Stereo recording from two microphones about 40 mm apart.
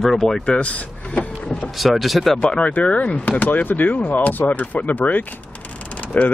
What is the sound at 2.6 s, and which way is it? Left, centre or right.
Speech, left.